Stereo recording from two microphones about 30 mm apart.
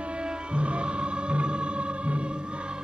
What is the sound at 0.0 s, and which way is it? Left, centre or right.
Music, right.